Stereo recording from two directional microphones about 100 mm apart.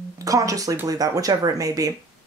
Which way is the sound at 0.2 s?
35° right (ahead or behind).